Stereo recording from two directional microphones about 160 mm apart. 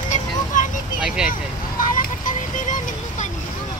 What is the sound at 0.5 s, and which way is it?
Vehicle, 55° left (ahead or behind).